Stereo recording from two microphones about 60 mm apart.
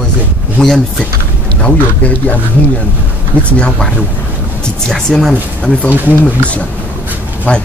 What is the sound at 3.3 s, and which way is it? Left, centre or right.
Speech, right.